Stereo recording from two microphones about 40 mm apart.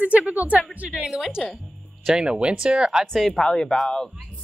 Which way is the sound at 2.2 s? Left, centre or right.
Right.